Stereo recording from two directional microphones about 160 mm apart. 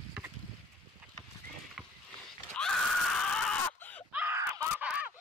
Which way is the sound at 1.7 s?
5° left (ahead or behind).